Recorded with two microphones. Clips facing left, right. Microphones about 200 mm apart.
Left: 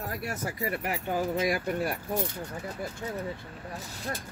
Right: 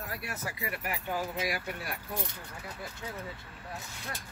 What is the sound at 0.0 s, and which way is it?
Speech, 40° left (ahead or behind).